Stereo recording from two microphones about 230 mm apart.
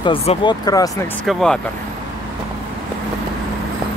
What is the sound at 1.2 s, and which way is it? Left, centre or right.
Speech, centre.